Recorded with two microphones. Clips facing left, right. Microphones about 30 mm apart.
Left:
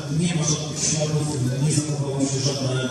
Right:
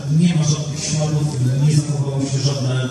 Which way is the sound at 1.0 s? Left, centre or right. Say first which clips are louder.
Right 4 dB; centre.